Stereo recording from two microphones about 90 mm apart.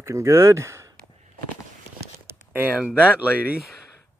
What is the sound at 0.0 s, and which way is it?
Speech, 30° right (ahead or behind).